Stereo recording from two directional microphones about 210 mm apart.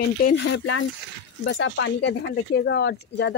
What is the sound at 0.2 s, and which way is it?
Speech, 50° left (ahead or behind).